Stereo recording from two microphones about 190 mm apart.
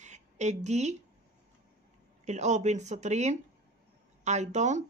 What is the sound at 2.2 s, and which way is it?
Speech, 40° right (ahead or behind).